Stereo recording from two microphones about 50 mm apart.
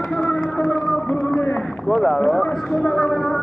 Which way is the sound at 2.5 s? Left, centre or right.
Centre.